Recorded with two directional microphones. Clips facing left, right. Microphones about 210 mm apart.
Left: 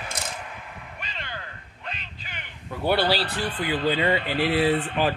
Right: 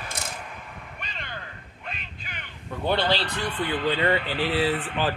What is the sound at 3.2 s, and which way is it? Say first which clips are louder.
Speech: left 1 dB; 35° left (ahead or behind).